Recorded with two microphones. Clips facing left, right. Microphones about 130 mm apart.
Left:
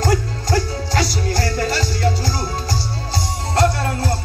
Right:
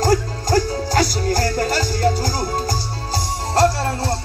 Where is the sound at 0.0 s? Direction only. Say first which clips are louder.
Right 2 dB; 45° right (ahead or behind).